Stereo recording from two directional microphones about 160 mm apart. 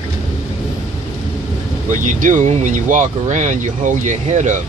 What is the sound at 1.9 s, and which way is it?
Speech, 55° right (ahead or behind).